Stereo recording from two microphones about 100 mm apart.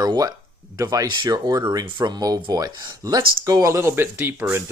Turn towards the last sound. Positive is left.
turn(degrees=-25)  # may be behind; listen again after turning